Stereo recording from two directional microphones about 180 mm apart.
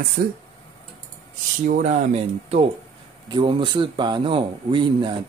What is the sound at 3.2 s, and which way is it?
Speech, 25° right (ahead or behind).